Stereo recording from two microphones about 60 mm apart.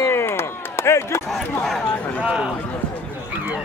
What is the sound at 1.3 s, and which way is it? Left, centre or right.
Speech, centre.